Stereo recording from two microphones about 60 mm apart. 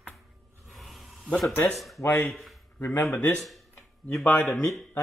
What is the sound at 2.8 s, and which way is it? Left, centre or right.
Speech, left.